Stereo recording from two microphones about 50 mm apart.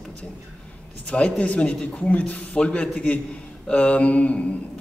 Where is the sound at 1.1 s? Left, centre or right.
Left.